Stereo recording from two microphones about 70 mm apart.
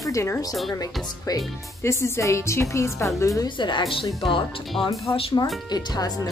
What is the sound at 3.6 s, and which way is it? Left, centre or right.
Speech, left.